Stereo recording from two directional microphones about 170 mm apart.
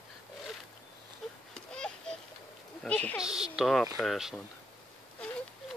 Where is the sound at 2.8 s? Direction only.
10° left (ahead or behind).